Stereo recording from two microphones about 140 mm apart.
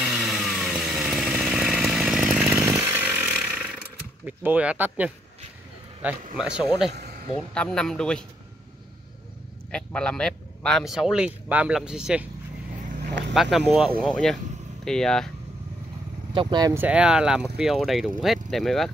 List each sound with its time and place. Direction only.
0.0 s chainsaw: 5° right (ahead or behind)
6.3 s a man's voice: 5° right (ahead or behind)
9.7 s a man's voice: 5° left (ahead or behind)
13.3 s a man's voice: centre (ahead or behind)
16.3 s speech: 30° right (ahead or behind)
16.7 s a man's voice: 10° right (ahead or behind)